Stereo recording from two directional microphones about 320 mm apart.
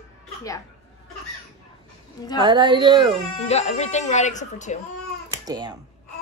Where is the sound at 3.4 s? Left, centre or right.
Centre.